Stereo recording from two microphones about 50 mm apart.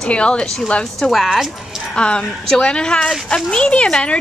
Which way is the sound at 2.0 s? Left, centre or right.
Centre.